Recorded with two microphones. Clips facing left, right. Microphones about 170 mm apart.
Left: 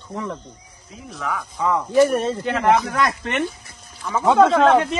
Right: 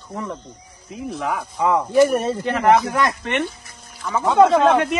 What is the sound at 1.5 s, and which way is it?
Speech, 10° right (ahead or behind).